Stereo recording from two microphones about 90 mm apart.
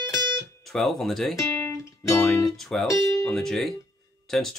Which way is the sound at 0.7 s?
Centre (ahead or behind).